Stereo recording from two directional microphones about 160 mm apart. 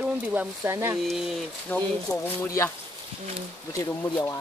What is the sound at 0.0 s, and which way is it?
Speech, 10° right (ahead or behind).